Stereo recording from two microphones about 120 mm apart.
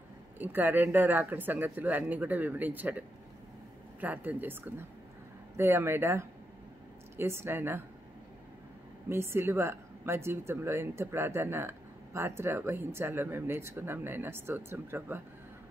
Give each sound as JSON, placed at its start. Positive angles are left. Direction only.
{"t": 0.4, "sound": "speech", "side_deg": -15}
{"t": 4.0, "sound": "a woman's voice", "side_deg": -15}
{"t": 9.1, "sound": "a woman's voice", "side_deg": -20}